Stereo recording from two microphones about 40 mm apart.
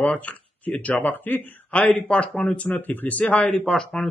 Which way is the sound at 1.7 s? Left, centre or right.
Left.